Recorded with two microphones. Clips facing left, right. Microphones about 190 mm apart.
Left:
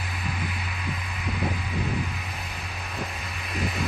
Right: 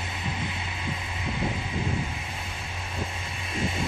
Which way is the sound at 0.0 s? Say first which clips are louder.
Even; 25° right (ahead or behind).